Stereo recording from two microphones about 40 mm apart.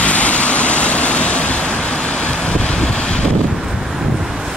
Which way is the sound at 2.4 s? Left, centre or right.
Centre.